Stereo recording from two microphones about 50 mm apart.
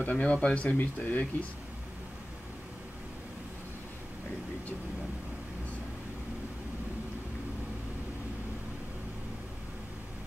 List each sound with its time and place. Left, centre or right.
0.0 s speech: left